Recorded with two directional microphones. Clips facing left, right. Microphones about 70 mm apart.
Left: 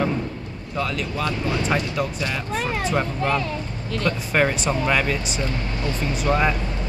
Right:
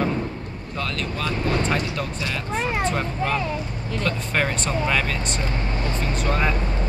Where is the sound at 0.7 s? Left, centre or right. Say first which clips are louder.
Left 3 dB; centre.